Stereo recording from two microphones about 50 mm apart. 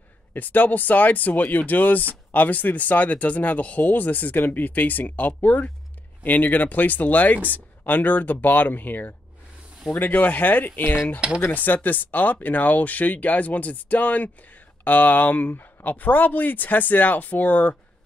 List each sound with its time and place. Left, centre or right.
0.3 s speech: left